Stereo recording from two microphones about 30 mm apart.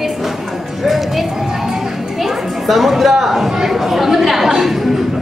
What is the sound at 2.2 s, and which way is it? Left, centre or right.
A woman's voice, centre.